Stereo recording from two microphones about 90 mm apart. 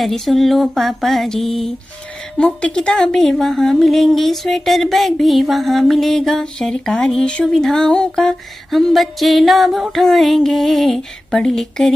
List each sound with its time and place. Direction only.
0.0 s a woman's voice: centre (ahead or behind)